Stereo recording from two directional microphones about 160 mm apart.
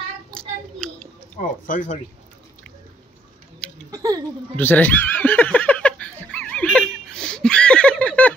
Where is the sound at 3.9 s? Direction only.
20° right (ahead or behind).